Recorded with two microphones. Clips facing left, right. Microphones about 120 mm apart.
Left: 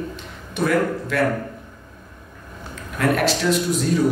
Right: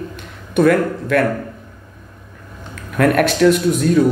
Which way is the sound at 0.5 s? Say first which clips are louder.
Right 6 dB; 55° right (ahead or behind).